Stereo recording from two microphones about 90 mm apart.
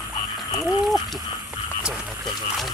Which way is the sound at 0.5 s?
Centre (ahead or behind).